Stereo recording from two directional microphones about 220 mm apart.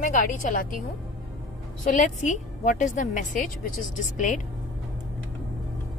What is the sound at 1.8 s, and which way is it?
A woman's voice, 35° left (ahead or behind).